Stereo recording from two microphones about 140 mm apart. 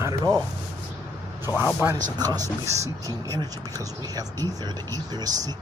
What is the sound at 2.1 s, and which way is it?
Speech, 25° right (ahead or behind).